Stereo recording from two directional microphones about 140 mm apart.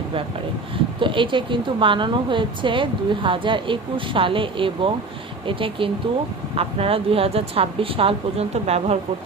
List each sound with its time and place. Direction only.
0.9 s a woman's voice: 35° right (ahead or behind)